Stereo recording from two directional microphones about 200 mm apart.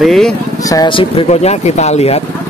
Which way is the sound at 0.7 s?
20° left (ahead or behind).